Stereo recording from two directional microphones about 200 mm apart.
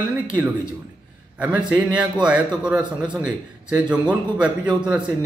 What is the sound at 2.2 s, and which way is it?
A man's voice, 5° right (ahead or behind).